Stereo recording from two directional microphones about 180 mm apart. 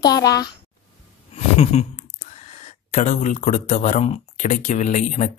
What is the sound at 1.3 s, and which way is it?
Speech, 35° left (ahead or behind).